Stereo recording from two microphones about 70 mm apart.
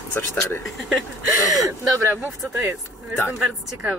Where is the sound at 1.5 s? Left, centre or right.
Right.